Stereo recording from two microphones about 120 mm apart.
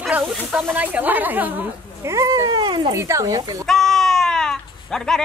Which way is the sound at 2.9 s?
25° right (ahead or behind).